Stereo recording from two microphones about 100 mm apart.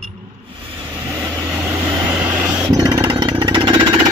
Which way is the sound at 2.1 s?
20° right (ahead or behind).